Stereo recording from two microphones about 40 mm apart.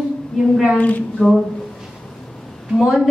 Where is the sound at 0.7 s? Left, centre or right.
Left.